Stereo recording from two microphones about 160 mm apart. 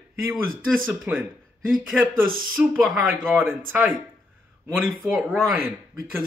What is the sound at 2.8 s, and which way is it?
Speech, centre (ahead or behind).